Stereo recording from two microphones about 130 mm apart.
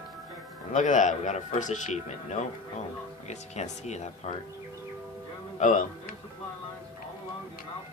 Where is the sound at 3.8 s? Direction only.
60° left (ahead or behind).